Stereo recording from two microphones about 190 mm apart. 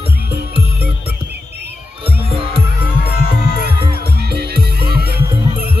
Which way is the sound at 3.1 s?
55° left (ahead or behind).